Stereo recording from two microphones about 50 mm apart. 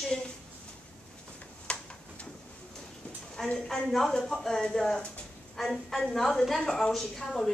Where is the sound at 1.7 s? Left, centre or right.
Left.